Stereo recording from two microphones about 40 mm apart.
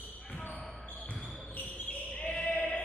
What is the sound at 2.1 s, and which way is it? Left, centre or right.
Basketball bounce, left.